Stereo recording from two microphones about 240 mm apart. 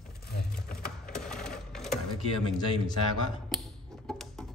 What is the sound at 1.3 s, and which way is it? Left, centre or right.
Sewing machine, centre.